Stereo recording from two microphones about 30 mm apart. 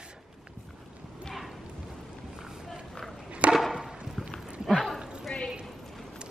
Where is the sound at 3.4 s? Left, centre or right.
Right.